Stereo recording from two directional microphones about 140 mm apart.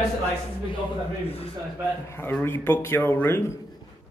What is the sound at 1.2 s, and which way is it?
Speech, 45° left (ahead or behind).